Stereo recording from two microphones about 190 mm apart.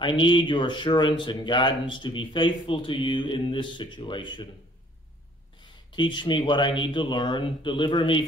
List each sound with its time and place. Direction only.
0.0 s speech: 25° left (ahead or behind)
5.9 s speech: 25° left (ahead or behind)